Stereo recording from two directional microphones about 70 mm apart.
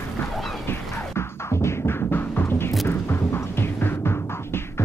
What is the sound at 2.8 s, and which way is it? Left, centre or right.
Throbbing, left.